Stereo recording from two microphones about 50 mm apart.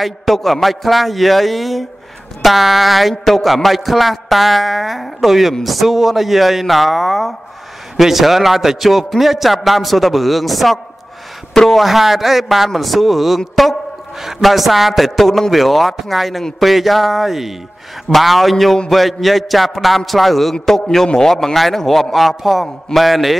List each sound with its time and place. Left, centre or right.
0.0 s a man's voice: centre
11.8 s a man's voice: centre
20.5 s a man's voice: centre